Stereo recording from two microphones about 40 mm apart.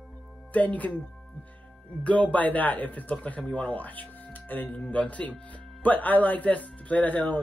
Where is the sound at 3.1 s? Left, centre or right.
Left.